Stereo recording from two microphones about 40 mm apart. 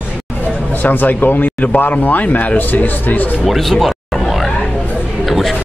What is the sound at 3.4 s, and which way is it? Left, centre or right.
Music, centre.